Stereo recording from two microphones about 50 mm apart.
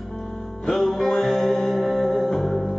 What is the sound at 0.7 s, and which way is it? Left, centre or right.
Music, centre.